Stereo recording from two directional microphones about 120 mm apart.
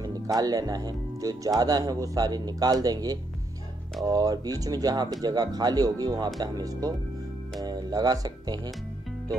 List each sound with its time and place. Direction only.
0.0 s speech: 30° right (ahead or behind)